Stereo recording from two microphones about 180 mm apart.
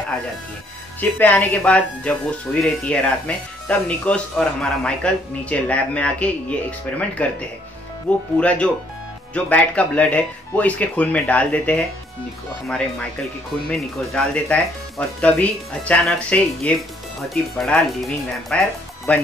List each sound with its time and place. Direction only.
1.2 s speech: 10° left (ahead or behind)